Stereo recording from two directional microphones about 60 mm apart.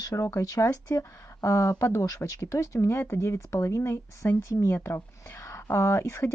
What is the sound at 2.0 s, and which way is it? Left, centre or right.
Speech, left.